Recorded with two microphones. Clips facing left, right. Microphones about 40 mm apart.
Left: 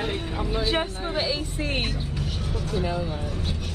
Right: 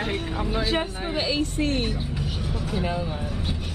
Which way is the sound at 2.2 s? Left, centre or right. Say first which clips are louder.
Right 1 dB; centre.